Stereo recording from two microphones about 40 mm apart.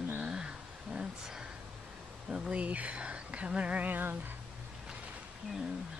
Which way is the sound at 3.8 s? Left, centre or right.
Right.